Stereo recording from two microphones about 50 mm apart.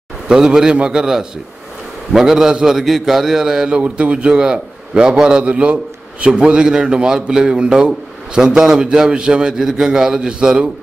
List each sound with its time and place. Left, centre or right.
0.3 s a man's voice: centre
5.5 s a man's voice: right